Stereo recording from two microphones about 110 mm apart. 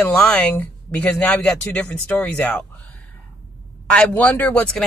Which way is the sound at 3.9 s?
15° left (ahead or behind).